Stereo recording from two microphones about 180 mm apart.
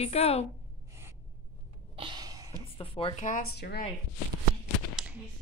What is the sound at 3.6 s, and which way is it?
Speech, 65° left (ahead or behind).